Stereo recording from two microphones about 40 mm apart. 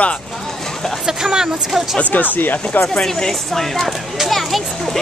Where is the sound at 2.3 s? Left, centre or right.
Left.